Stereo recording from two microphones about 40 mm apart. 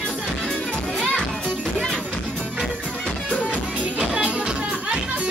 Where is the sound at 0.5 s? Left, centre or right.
Left.